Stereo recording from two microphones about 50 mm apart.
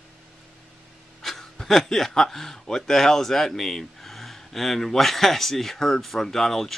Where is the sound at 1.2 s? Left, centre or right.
Centre.